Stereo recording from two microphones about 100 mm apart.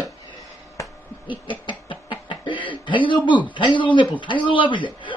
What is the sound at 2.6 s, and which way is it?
A man's voice, 55° left (ahead or behind).